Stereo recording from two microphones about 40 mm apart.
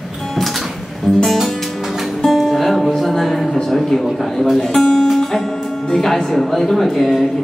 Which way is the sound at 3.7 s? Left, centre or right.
Centre.